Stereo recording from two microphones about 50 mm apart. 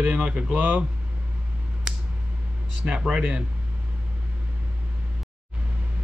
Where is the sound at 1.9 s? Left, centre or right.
Centre.